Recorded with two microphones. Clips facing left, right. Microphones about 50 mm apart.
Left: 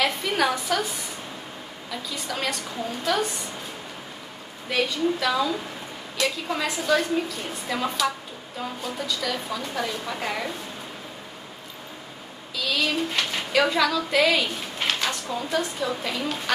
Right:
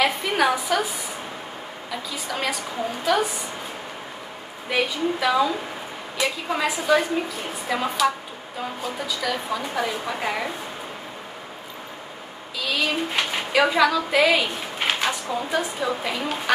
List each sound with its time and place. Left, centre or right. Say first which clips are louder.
0.0 s speech: right 3 dB; centre
4.6 s speech: right 1 dB; centre
12.5 s speech: right 1 dB; centre